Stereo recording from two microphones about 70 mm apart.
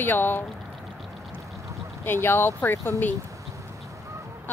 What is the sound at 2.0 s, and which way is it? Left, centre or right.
Speech, left.